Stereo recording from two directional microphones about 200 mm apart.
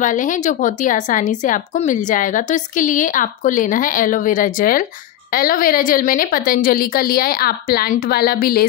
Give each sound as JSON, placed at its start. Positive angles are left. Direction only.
{"t": 0.0, "sound": "a woman's voice", "side_deg": 40}